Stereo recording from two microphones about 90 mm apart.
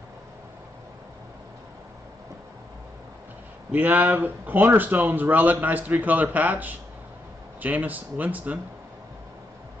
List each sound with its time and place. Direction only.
3.7 s speech: 20° right (ahead or behind)